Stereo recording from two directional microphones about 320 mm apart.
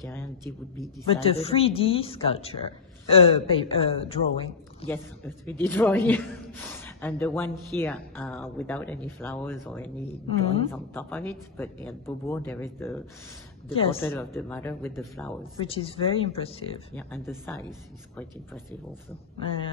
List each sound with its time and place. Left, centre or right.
0.0 s speech: centre
1.1 s speech: centre
5.5 s speech: centre
10.2 s speech: centre
10.7 s speech: centre
13.7 s speech: centre
14.1 s speech: centre
16.9 s speech: centre